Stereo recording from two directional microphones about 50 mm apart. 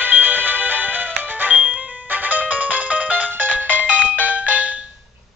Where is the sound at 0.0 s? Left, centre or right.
Right.